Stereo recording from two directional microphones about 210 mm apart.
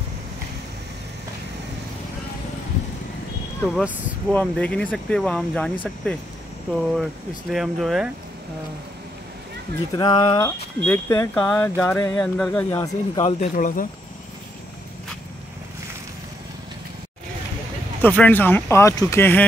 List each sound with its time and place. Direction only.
3.6 s speech: 5° right (ahead or behind)
6.8 s speech: centre (ahead or behind)
9.9 s speech: 20° left (ahead or behind)
13.2 s speech: 35° left (ahead or behind)
18.0 s speech: 10° left (ahead or behind)